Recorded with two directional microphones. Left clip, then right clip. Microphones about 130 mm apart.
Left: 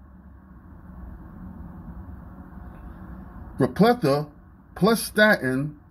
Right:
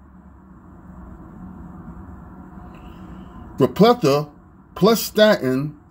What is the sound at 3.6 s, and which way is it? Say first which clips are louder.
Speech: right 5 dB; 45° right (ahead or behind).